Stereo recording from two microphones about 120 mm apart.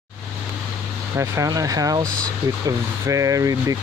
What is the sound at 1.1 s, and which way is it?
Speech, 25° right (ahead or behind).